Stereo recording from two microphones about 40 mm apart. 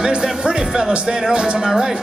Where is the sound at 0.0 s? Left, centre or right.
Centre.